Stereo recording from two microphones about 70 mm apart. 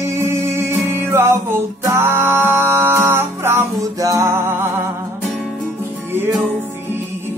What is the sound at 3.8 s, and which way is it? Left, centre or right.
Music, right.